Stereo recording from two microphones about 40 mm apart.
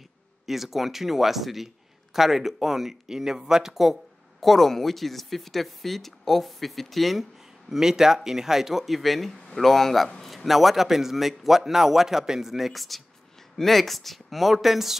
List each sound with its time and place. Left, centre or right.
0.5 s speech: centre
7.3 s a man's voice: centre